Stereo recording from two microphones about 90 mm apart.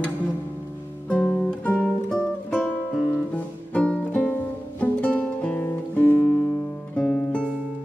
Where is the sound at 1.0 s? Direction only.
15° left (ahead or behind).